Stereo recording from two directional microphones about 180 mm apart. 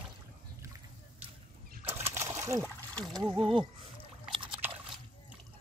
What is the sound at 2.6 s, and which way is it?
Speech, 10° left (ahead or behind).